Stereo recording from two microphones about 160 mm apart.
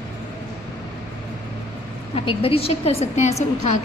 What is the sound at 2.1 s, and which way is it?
A woman's voice, 35° left (ahead or behind).